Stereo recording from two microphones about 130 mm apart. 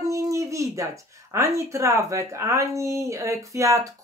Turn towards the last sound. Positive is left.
turn(degrees=-25)  # may be behind; listen again after turning